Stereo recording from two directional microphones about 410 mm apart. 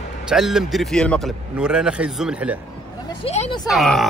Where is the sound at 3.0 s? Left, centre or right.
Centre.